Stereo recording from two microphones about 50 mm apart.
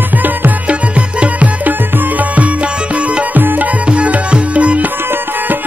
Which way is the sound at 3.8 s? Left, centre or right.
Right.